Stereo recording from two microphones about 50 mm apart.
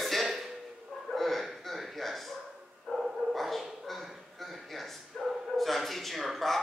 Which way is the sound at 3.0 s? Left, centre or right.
Centre.